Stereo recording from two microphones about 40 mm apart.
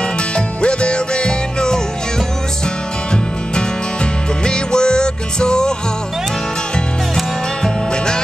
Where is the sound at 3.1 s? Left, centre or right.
Left.